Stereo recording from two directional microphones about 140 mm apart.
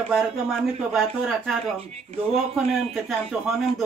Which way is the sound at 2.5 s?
Centre (ahead or behind).